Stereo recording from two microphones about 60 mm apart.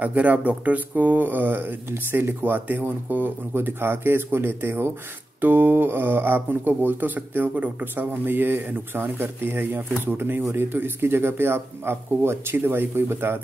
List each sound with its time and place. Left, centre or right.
0.0 s speech: right